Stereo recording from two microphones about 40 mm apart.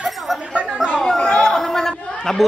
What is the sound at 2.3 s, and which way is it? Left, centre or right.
Speech, centre.